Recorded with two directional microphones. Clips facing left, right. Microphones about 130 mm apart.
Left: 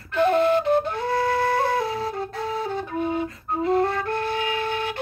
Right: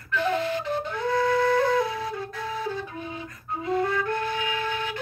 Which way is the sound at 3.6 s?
55° left (ahead or behind).